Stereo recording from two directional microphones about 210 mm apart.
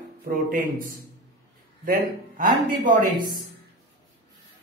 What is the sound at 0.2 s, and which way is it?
A man's voice, 40° right (ahead or behind).